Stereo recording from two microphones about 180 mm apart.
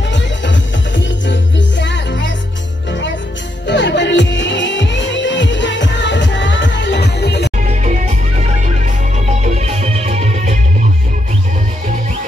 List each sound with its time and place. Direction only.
0.1 s music: 90° left
3.6 s music: 80° left
7.6 s music: 40° right (ahead or behind)
9.4 s music: 35° right (ahead or behind)